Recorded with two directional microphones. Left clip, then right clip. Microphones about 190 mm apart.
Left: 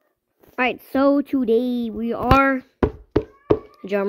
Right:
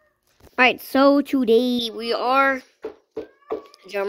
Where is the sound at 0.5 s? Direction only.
5° right (ahead or behind).